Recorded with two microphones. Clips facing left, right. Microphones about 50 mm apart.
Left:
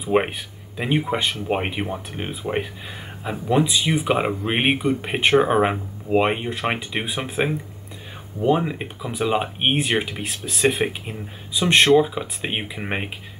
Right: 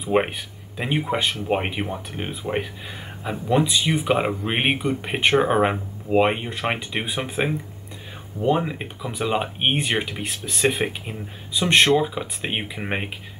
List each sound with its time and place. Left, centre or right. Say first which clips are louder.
0.0 s speech: left 1 dB; centre